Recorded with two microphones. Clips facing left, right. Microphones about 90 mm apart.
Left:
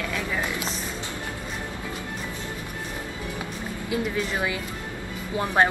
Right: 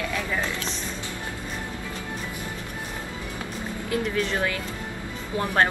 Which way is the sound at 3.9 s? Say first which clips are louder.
Right 1 dB; 10° left (ahead or behind).